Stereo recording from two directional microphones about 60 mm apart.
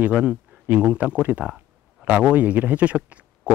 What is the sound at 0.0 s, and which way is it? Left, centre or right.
Speech, right.